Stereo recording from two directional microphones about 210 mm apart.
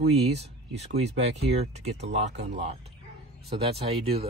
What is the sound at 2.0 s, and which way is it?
Speech, 55° right (ahead or behind).